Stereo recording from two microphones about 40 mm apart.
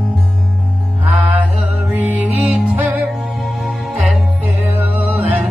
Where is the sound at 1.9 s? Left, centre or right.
Right.